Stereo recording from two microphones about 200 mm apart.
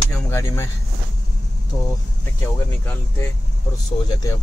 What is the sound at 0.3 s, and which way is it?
Speech, 15° left (ahead or behind).